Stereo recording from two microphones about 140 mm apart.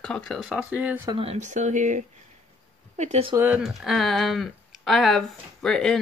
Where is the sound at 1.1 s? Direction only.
50° right (ahead or behind).